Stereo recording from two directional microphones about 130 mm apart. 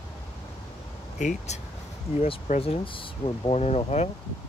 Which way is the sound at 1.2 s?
70° left (ahead or behind).